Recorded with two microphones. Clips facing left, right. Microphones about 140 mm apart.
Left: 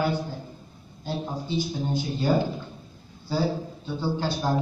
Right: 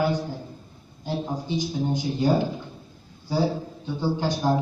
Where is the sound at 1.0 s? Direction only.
15° right (ahead or behind).